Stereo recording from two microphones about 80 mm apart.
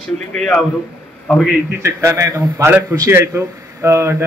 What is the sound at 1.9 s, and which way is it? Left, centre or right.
A man's voice, right.